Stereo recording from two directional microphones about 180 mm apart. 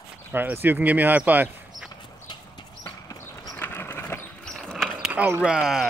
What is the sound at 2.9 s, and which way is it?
Clip-clop, 20° left (ahead or behind).